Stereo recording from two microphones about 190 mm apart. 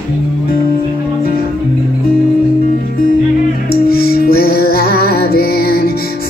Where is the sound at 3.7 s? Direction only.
50° left (ahead or behind).